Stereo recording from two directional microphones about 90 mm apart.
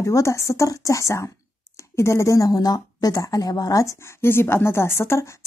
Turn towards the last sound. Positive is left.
turn(degrees=30)  # may be behind; listen again after turning